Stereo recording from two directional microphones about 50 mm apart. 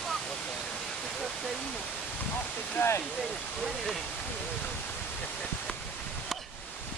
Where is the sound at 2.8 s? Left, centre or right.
Left.